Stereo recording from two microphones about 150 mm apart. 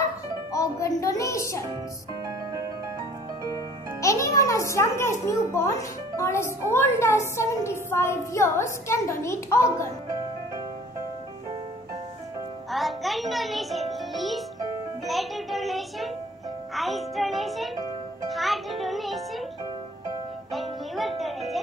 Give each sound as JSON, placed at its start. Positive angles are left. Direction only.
{"t": 0.5, "sound": "music", "side_deg": 20}
{"t": 3.5, "sound": "music", "side_deg": 20}
{"t": 5.2, "sound": "speech", "side_deg": 20}
{"t": 12.7, "sound": "music", "side_deg": 0}
{"t": 15.0, "sound": "a child's voice", "side_deg": 0}
{"t": 18.3, "sound": "music", "side_deg": 0}
{"t": 20.5, "sound": "music", "side_deg": 0}